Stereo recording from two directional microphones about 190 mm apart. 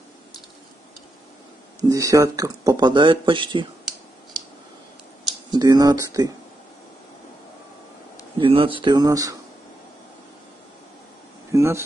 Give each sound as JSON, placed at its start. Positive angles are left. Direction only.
{"t": 1.8, "sound": "speech", "side_deg": -15}
{"t": 5.5, "sound": "speech", "side_deg": -20}
{"t": 8.4, "sound": "speech", "side_deg": -30}
{"t": 11.5, "sound": "a sound", "side_deg": -15}